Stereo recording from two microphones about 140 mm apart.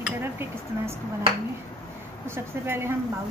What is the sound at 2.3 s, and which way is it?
Speech, 15° right (ahead or behind).